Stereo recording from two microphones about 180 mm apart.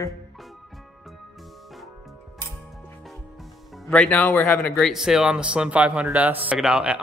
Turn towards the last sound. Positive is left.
turn(degrees=-5)  # may be behind; listen again after turning